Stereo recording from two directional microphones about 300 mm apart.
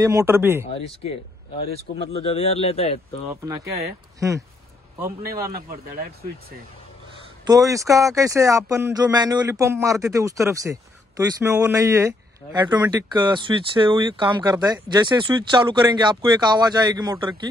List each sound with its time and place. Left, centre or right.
0.0 s speech: centre
0.7 s speech: centre
2.1 s speech: centre
3.3 s speech: centre
7.4 s speech: centre